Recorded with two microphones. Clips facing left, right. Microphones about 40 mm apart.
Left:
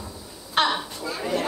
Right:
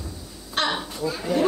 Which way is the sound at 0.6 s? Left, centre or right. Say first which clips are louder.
Left 3 dB; centre.